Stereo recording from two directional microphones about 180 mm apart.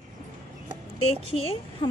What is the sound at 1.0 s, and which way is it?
Speech, 30° left (ahead or behind).